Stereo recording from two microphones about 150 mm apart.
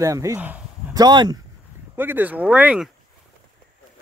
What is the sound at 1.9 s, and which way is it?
Speech, 15° right (ahead or behind).